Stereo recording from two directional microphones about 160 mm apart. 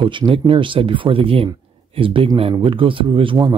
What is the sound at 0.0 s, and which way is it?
Speech, 30° right (ahead or behind).